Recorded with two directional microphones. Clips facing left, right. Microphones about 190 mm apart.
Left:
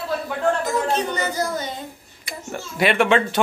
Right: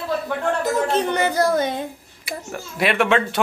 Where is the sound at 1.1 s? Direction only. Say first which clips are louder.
Right 6 dB; 60° right (ahead or behind).